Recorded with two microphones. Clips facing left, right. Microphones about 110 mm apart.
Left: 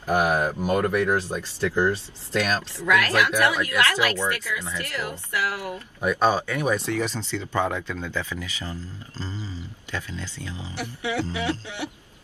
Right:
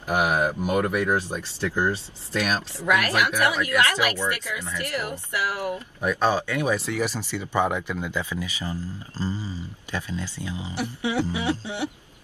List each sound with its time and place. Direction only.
0.0 s a sound: 15° right (ahead or behind)
0.6 s speech: 10° right (ahead or behind)
6.0 s speech: 5° left (ahead or behind)
6.7 s speech: 5° right (ahead or behind)